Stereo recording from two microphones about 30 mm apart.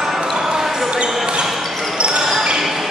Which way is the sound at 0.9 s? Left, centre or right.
Right.